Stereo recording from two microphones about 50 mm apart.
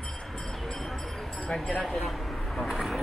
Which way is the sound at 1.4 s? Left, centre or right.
Centre.